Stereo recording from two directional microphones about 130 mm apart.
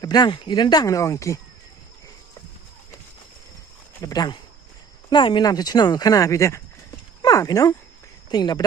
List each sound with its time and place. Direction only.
0.0 s speech: 35° left (ahead or behind)
4.0 s speech: 30° left (ahead or behind)